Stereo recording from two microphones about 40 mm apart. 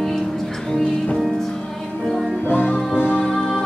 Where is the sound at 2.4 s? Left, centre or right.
Left.